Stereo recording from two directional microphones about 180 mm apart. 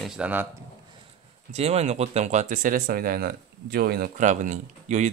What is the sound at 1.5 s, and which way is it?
Speech, 35° right (ahead or behind).